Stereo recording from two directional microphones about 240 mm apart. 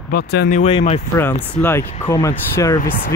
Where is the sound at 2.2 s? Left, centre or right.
Centre.